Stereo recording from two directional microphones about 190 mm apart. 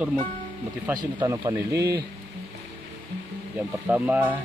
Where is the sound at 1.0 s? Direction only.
20° right (ahead or behind).